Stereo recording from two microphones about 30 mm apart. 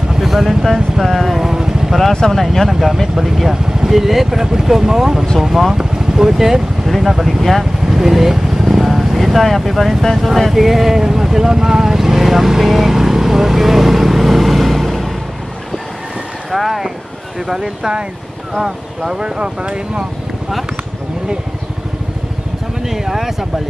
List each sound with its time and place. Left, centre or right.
0.2 s speech: centre
1.4 s vehicle: centre
2.2 s speech: left
2.7 s speech: centre
7.9 s speech: centre
16.5 s speech: centre
17.5 s speech: centre
19.2 s speech: right
22.8 s speech: centre